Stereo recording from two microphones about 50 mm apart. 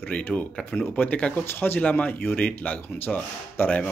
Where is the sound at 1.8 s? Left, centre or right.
Left.